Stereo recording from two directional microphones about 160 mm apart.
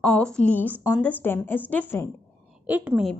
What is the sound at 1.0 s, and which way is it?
Speech, 10° left (ahead or behind).